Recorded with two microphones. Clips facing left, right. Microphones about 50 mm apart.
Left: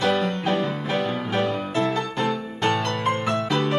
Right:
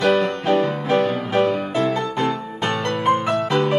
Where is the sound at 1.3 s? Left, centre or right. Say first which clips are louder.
Right 6 dB; right.